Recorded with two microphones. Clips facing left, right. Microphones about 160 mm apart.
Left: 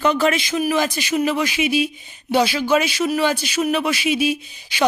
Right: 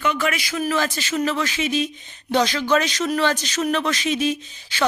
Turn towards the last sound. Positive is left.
turn(degrees=10)  # may be behind; listen again after turning